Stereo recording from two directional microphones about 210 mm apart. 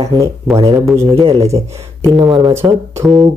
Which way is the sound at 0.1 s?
20° right (ahead or behind).